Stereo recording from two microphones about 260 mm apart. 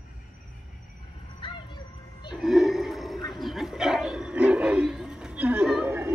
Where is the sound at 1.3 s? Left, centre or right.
Centre.